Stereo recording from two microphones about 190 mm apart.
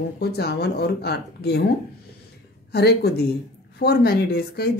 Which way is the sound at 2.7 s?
55° left (ahead or behind).